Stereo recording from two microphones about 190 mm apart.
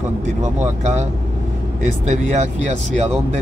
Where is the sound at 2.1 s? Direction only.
40° right (ahead or behind).